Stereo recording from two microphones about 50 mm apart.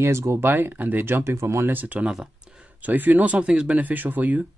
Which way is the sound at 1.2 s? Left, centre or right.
Right.